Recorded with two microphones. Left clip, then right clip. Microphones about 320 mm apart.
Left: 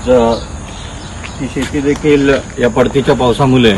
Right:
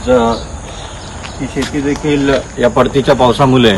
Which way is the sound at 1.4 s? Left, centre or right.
Right.